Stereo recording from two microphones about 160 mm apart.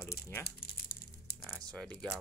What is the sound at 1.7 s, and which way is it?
Speech, 5° left (ahead or behind).